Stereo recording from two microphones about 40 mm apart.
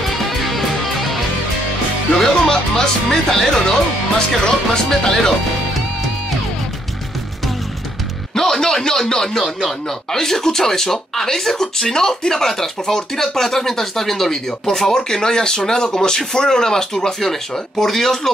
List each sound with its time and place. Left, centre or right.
0.0 s music: centre
2.1 s music: centre
4.4 s speech: centre
8.4 s speech: centre